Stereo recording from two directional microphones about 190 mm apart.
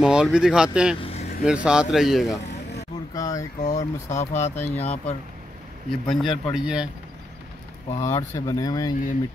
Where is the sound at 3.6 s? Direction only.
40° left (ahead or behind).